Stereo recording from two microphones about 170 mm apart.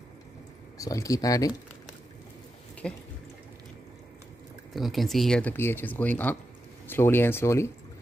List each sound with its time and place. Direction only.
0.7 s speech: 20° left (ahead or behind)
2.8 s speech: 5° left (ahead or behind)
4.7 s speech: centre (ahead or behind); by 7.7 s 15° left (ahead or behind)